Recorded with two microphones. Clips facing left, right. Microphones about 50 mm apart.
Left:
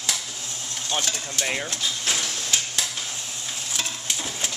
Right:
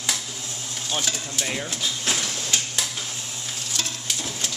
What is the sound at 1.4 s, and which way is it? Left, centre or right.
Speech, centre.